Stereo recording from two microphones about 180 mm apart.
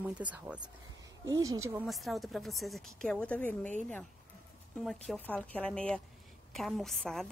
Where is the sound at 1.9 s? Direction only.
Centre (ahead or behind).